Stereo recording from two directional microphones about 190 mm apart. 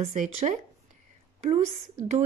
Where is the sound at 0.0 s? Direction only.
40° right (ahead or behind).